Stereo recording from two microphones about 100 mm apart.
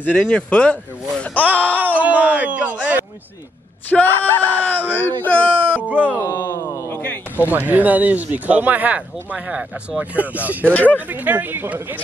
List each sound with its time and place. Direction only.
0.0 s speech: 15° left (ahead or behind)
1.5 s a sound: 15° left (ahead or behind)
2.0 s speech: 15° right (ahead or behind)
3.9 s speech: 20° left (ahead or behind)
5.8 s speech: 15° right (ahead or behind)
6.1 s a sound: 25° left (ahead or behind)
7.4 s speech: 15° right (ahead or behind)
10.7 s speech: 15° left (ahead or behind)
11.1 s speech: 15° right (ahead or behind)